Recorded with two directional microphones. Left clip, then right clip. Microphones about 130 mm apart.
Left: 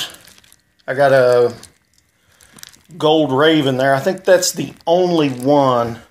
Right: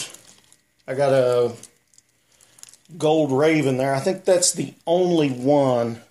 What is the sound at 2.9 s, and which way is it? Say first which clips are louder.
Speech: left 5 dB; 10° right (ahead or behind).